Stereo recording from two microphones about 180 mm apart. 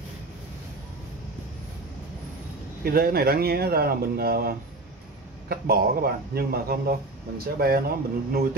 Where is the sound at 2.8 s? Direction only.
55° right (ahead or behind).